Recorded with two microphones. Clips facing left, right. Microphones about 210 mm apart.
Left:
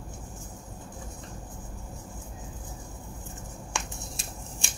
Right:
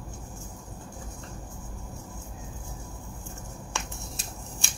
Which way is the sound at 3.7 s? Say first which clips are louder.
Left 1 dB; 15° left (ahead or behind).